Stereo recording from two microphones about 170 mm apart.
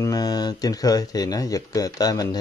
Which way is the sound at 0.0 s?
20° left (ahead or behind).